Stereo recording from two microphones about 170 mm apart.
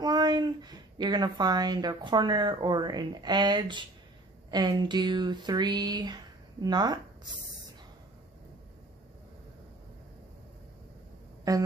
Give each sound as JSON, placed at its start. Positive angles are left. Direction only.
{"t": 0.0, "sound": "a woman's voice", "side_deg": -25}
{"t": 11.5, "sound": "music", "side_deg": -20}